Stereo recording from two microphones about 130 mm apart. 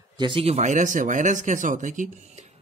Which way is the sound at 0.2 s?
45° right (ahead or behind).